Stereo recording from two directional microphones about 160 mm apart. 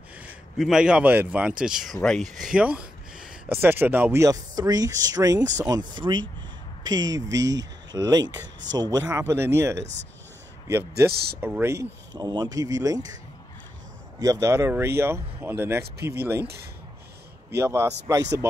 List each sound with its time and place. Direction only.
0.2 s a man's voice: 5° right (ahead or behind)
11.1 s speech: 80° right
11.4 s speech: 15° right (ahead or behind)
14.2 s speech: 20° right (ahead or behind)
17.6 s speech: 15° right (ahead or behind)